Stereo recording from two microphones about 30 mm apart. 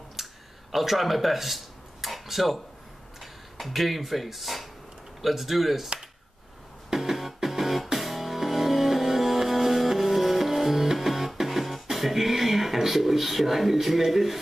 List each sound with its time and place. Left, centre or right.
0.1 s a sound: centre
3.2 s speech: centre
6.9 s music: centre